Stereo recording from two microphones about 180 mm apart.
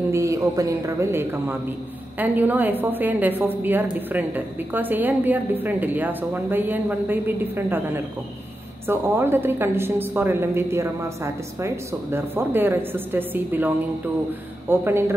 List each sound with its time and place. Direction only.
0.1 s a woman's voice: 15° right (ahead or behind)